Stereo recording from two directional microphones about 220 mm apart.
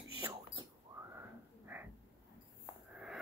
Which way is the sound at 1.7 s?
10° right (ahead or behind).